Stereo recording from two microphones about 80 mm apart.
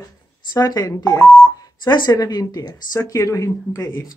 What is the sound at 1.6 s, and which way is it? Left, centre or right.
Speech, left.